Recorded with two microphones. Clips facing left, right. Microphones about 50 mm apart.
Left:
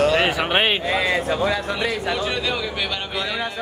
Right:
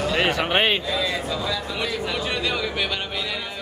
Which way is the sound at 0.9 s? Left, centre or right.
Left.